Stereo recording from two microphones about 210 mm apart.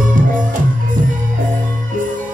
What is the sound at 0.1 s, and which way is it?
Music, 40° right (ahead or behind).